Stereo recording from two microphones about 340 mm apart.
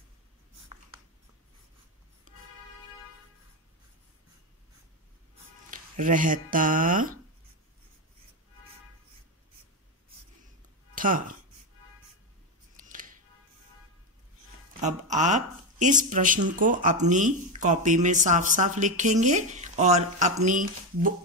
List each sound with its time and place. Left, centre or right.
5.7 s speech: right
11.0 s speech: right
12.8 s music: right
14.8 s speech: right